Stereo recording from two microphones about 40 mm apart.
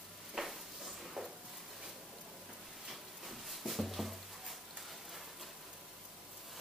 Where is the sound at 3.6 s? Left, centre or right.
Centre.